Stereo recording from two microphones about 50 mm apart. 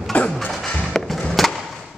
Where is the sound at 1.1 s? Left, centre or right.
Centre.